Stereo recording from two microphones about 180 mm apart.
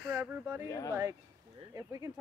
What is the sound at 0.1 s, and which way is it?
Speech, 10° right (ahead or behind).